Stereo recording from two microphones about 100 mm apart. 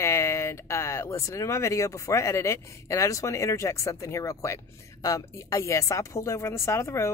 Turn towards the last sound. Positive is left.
turn(degrees=25)  # may be behind; listen again after turning